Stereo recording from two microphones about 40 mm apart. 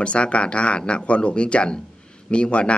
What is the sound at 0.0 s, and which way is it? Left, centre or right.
Speech, left.